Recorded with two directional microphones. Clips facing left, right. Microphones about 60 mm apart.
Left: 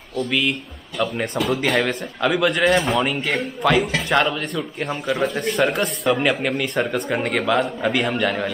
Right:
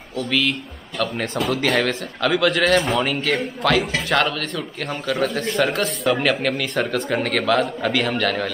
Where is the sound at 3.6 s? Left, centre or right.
Centre.